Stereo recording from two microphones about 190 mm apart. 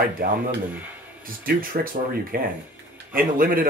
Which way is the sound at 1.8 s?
50° right (ahead or behind).